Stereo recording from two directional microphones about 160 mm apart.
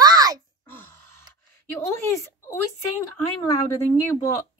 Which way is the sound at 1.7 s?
15° left (ahead or behind).